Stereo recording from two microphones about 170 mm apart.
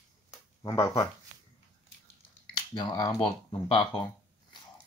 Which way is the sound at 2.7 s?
25° left (ahead or behind).